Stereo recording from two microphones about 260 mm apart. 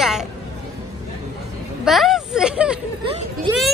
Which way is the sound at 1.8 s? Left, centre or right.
Centre.